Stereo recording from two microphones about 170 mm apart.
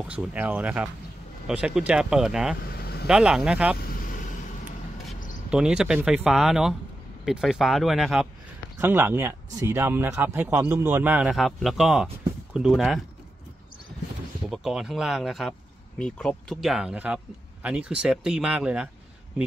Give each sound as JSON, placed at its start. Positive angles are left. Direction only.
{"t": 0.1, "sound": "speech", "side_deg": -10}
{"t": 2.8, "sound": "vehicle", "side_deg": 70}
{"t": 3.1, "sound": "speech", "side_deg": -5}
{"t": 3.8, "sound": "vehicle", "side_deg": 55}
{"t": 5.5, "sound": "speech", "side_deg": -5}
{"t": 8.7, "sound": "speech", "side_deg": -15}
{"t": 14.5, "sound": "speech", "side_deg": 0}